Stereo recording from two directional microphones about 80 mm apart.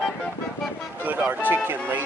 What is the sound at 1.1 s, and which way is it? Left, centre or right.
Music, right.